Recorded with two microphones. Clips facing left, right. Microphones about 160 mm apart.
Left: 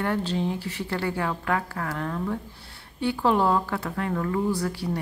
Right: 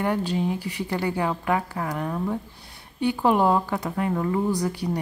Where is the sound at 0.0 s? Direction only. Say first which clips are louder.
Right 2 dB; 15° right (ahead or behind).